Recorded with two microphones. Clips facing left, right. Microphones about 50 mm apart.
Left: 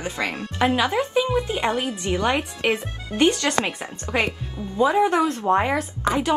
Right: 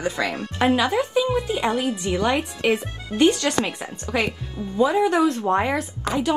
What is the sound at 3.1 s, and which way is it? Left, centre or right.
Speech, left.